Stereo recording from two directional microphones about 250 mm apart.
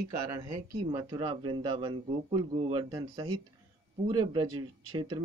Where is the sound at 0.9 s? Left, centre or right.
Centre.